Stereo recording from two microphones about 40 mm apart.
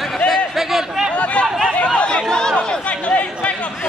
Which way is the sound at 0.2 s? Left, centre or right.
Left.